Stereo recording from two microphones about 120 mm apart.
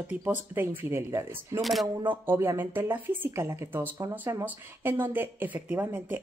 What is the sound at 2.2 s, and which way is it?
Speech, 20° right (ahead or behind).